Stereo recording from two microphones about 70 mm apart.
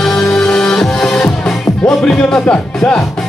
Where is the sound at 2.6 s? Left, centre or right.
Centre.